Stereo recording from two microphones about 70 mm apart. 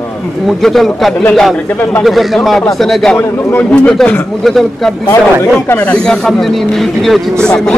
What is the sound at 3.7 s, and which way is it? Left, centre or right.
Speech, centre.